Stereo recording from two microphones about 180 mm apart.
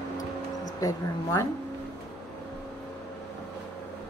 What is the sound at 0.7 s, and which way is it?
Speech, 20° left (ahead or behind).